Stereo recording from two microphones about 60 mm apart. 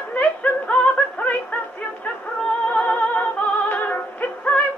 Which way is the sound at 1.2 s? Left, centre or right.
Left.